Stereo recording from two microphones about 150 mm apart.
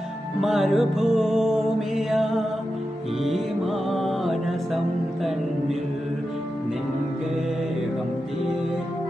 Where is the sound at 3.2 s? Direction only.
Centre (ahead or behind).